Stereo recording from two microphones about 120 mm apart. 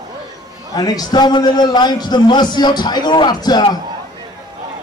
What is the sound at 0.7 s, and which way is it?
A man's voice, 35° left (ahead or behind).